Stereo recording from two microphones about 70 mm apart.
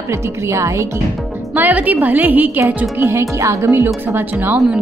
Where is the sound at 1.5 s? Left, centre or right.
Right.